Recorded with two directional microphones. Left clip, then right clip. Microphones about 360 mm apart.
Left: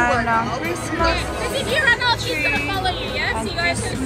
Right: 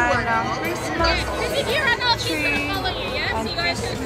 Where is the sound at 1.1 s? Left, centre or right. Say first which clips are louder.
Even; left.